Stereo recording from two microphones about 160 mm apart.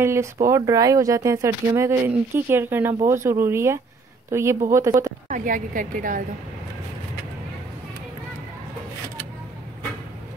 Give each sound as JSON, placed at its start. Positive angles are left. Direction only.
{"t": 0.0, "sound": "speech", "side_deg": -15}
{"t": 5.3, "sound": "a woman's voice", "side_deg": -55}